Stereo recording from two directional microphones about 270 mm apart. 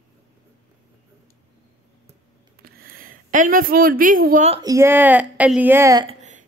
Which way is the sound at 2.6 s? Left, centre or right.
Right.